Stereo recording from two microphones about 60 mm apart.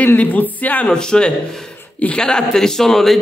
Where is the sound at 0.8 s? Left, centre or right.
Centre.